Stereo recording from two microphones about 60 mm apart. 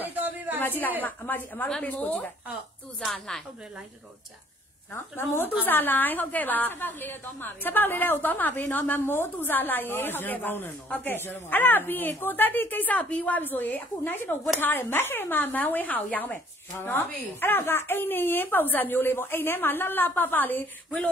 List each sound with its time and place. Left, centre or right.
0.0 s a sound: right
0.6 s a woman's voice: left
5.1 s a woman's voice: left